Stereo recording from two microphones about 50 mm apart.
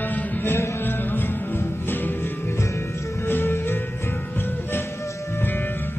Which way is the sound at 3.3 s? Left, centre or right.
Left.